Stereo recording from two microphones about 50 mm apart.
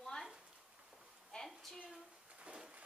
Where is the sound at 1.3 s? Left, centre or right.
Centre.